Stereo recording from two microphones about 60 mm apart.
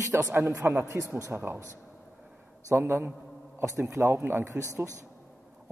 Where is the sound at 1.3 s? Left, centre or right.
Right.